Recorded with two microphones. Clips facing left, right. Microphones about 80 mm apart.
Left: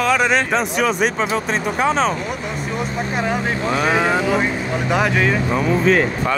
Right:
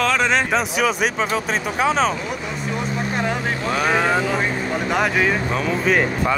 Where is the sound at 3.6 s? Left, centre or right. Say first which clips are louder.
Left 1 dB; centre.